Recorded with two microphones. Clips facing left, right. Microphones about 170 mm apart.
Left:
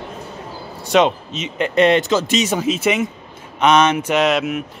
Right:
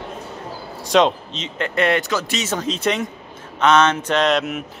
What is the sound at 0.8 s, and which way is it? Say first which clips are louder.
Speech: left 1 dB; 5° left (ahead or behind).